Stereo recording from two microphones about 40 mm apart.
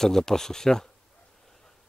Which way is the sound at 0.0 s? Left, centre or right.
Centre.